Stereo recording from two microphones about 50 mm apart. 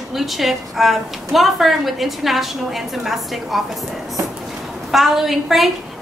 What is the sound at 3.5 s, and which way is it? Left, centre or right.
Speech, centre.